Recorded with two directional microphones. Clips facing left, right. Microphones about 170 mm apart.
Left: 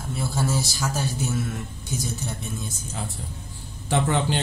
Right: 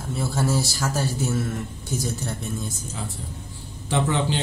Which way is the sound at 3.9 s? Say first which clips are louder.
Even; 50° left (ahead or behind).